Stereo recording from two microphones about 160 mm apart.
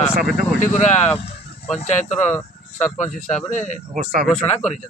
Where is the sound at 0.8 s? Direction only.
45° left (ahead or behind).